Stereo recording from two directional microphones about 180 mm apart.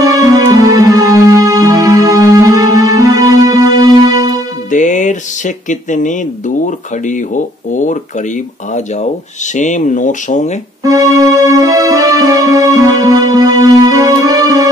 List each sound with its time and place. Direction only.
0.0 s music: 20° right (ahead or behind)
4.6 s music: 45° left (ahead or behind)
6.6 s speech: 45° left (ahead or behind)
9.6 s speech: 45° left (ahead or behind)
10.8 s music: 20° right (ahead or behind)